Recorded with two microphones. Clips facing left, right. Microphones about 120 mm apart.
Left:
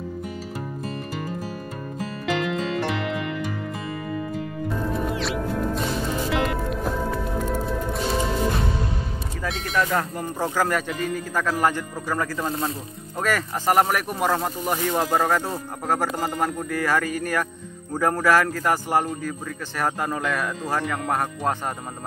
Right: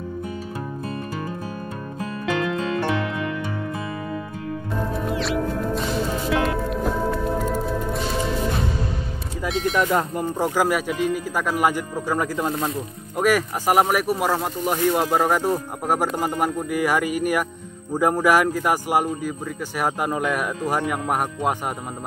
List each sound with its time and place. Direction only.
5.1 s music: centre (ahead or behind)
9.5 s speech: centre (ahead or behind)
9.8 s speech: 20° right (ahead or behind)
12.4 s speech: 30° right (ahead or behind)
13.2 s speech: 10° right (ahead or behind)